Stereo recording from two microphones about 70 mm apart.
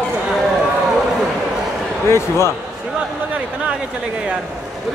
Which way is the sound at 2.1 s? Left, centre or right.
Left.